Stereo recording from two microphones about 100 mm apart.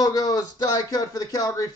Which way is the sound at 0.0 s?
40° left (ahead or behind).